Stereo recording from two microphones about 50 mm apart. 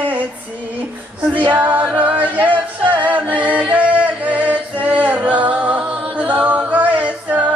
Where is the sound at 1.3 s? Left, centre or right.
Right.